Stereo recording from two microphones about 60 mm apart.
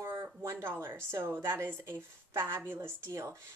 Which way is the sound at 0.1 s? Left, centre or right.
Right.